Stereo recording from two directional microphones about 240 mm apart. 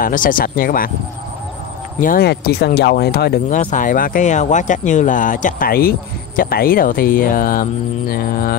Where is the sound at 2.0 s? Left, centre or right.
Left.